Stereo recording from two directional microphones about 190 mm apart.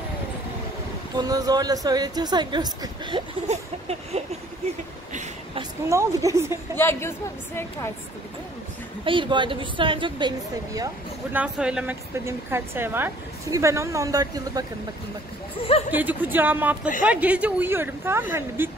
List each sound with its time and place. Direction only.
1.1 s speech: 20° right (ahead or behind)
3.4 s a sound: 35° right (ahead or behind)
5.6 s a woman's voice: 15° right (ahead or behind)
6.8 s a woman's voice: 15° left (ahead or behind)
9.0 s speech: 25° right (ahead or behind)
11.3 s a woman's voice: 5° right (ahead or behind)
15.9 s a woman's voice: 10° right (ahead or behind)